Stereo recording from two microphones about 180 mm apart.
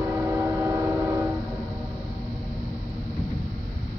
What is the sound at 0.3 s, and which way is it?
Train, 15° right (ahead or behind).